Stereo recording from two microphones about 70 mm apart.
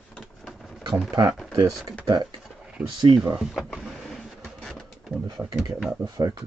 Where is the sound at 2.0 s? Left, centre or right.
Right.